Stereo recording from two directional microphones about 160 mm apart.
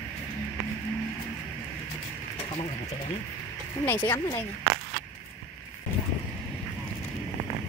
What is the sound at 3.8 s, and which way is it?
Speech, 10° left (ahead or behind).